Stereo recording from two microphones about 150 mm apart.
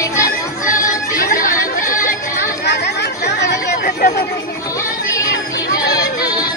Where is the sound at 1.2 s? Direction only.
65° left (ahead or behind).